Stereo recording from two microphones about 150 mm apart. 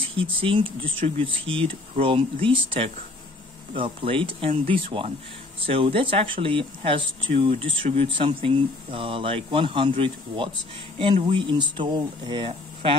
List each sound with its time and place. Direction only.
0.0 s speech: 35° right (ahead or behind)